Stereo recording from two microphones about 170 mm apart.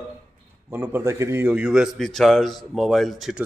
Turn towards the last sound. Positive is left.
turn(degrees=0)  # may be behind; listen again after turning